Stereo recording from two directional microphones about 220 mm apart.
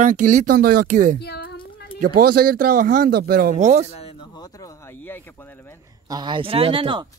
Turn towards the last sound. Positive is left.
turn(degrees=-20)  # may be behind; listen again after turning